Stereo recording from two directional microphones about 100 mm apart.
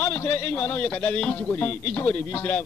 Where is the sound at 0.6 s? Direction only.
15° left (ahead or behind).